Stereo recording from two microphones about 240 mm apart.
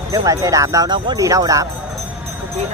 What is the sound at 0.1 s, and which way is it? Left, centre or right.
Speech, centre.